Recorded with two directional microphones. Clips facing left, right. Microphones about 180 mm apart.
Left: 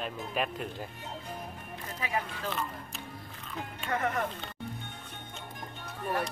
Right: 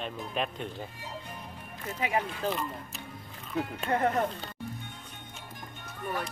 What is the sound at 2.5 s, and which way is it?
Speech, centre (ahead or behind).